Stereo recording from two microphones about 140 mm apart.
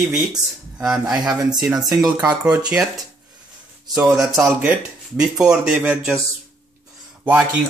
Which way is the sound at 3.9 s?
Centre (ahead or behind).